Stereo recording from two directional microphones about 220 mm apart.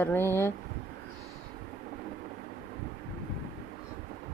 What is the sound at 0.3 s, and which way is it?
Speech, 10° left (ahead or behind).